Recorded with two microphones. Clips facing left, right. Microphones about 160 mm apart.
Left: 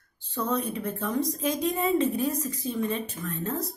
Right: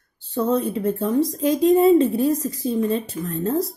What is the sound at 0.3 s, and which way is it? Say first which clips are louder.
Speech: right 8 dB; 30° right (ahead or behind).